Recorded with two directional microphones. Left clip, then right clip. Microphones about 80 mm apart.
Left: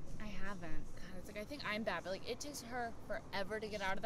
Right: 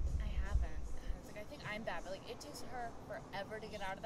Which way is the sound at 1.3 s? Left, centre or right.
Left.